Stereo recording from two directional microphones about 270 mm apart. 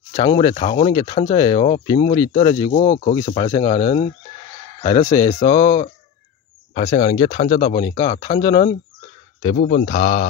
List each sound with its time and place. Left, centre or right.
0.1 s speech: centre
9.6 s speech: left